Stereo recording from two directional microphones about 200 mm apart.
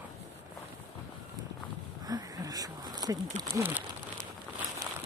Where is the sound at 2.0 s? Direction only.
20° right (ahead or behind).